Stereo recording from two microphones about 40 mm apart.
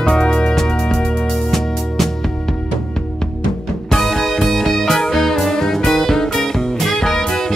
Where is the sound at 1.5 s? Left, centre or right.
Centre.